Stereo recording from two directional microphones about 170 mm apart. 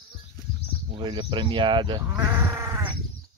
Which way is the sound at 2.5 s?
15° right (ahead or behind).